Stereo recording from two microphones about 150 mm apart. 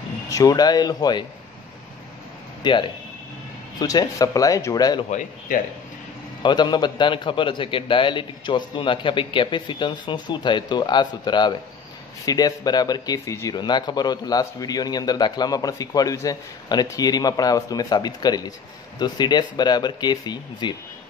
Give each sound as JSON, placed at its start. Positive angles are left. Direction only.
{"t": 0.3, "sound": "speech", "side_deg": 25}
{"t": 2.6, "sound": "a man's voice", "side_deg": 30}
{"t": 3.8, "sound": "speech", "side_deg": 25}
{"t": 6.4, "sound": "a man's voice", "side_deg": 30}